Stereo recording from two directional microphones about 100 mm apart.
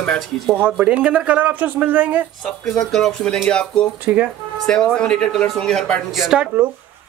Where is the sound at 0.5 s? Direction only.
15° right (ahead or behind).